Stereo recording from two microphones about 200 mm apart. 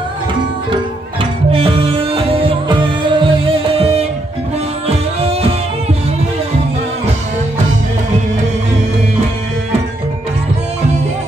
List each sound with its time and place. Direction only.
1.5 s music: 25° right (ahead or behind)